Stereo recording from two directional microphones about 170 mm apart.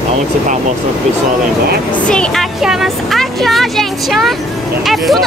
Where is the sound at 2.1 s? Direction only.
5° left (ahead or behind).